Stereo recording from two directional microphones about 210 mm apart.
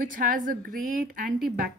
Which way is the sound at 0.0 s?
40° right (ahead or behind).